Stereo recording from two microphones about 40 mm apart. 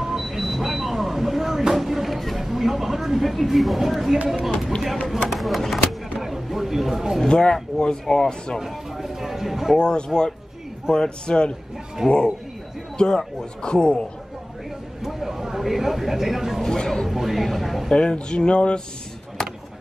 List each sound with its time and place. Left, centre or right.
0.0 s vehicle: centre
1.7 s a sound: centre
5.0 s speech: centre
6.1 s a sound: centre
7.2 s speech: centre
8.5 s speech: centre
9.8 s speech: centre
12.0 s speech: centre
12.9 s speech: centre
15.0 s speech: centre
16.6 s speech: centre
17.1 s speech: centre
17.9 s speech: left